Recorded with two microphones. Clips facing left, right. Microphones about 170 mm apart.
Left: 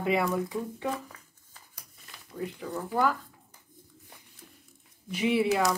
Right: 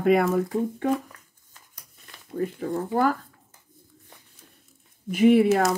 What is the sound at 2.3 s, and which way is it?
Speech, 45° right (ahead or behind).